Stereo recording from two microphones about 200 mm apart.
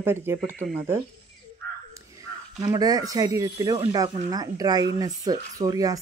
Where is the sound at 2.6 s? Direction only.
20° right (ahead or behind).